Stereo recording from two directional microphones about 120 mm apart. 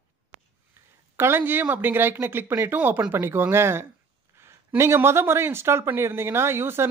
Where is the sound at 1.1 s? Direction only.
20° right (ahead or behind).